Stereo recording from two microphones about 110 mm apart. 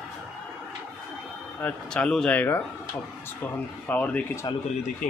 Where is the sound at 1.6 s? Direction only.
10° left (ahead or behind).